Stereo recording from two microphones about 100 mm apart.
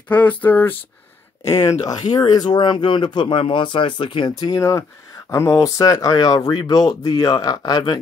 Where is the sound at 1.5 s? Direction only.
40° left (ahead or behind).